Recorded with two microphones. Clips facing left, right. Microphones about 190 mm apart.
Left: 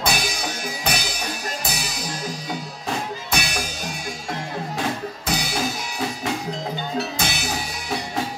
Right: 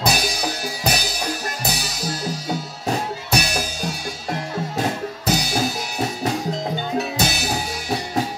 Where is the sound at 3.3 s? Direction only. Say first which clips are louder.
Right 5 dB; 40° right (ahead or behind).